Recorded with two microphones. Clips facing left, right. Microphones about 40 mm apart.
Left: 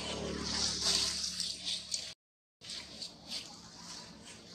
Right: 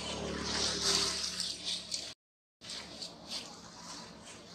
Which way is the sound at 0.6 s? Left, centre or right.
Right.